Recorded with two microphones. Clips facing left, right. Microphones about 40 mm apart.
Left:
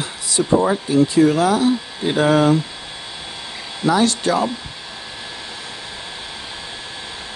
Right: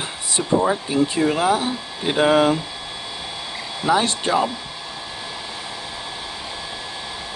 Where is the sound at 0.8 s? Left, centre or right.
Right.